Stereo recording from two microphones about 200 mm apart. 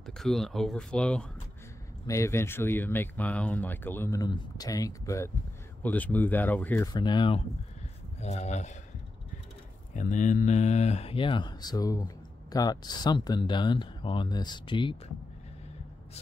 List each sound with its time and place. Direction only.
0.0 s speech: centre (ahead or behind)
6.9 s speech: 20° left (ahead or behind)
8.2 s speech: 35° left (ahead or behind)
9.9 s speech: 40° left (ahead or behind)